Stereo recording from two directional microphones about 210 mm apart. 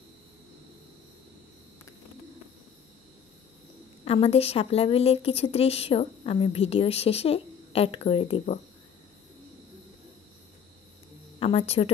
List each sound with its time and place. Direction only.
4.0 s a woman's voice: 30° left (ahead or behind)
11.3 s speech: 30° left (ahead or behind)